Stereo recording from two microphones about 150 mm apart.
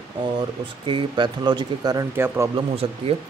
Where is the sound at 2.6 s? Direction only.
40° right (ahead or behind).